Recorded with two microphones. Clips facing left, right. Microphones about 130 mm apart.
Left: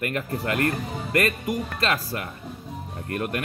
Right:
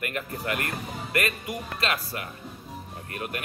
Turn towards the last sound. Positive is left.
turn(degrees=50)  # may be behind; listen again after turning